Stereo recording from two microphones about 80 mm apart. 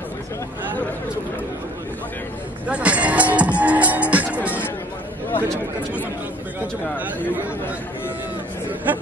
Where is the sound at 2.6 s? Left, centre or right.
Centre.